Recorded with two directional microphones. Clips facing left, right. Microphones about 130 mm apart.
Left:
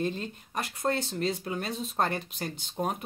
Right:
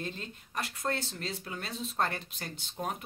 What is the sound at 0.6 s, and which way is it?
Speech, 15° left (ahead or behind).